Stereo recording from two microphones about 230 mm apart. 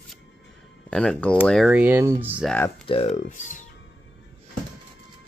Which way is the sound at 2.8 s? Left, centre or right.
Left.